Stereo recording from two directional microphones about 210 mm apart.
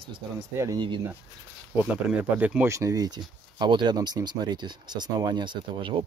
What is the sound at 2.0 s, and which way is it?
Speech, 5° right (ahead or behind).